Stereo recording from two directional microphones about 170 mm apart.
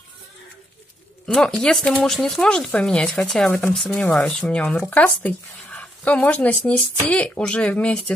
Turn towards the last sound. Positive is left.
turn(degrees=5)  # may be behind; listen again after turning